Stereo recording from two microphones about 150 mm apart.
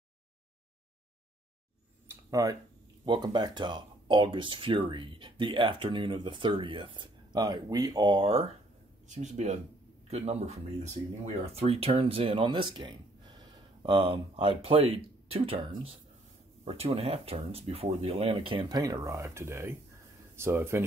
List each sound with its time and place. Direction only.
2.0 s a sound: 20° right (ahead or behind)
3.1 s speech: 25° right (ahead or behind)
9.0 s speech: 55° right (ahead or behind); by 20.8 s 15° right (ahead or behind)